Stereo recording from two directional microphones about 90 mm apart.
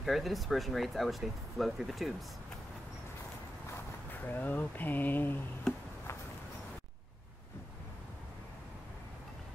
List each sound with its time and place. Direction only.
0.0 s speech: centre (ahead or behind)
4.1 s speech: 20° left (ahead or behind)